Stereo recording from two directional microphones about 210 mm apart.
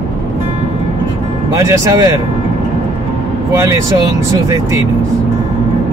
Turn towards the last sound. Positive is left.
turn(degrees=-15)  # may be behind; listen again after turning